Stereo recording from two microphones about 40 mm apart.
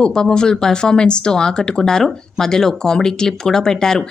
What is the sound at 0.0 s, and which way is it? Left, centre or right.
Speech, centre.